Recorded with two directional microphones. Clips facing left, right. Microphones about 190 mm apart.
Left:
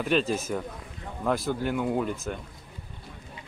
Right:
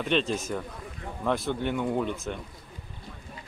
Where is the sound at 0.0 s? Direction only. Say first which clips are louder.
Left 1 dB; 5° left (ahead or behind).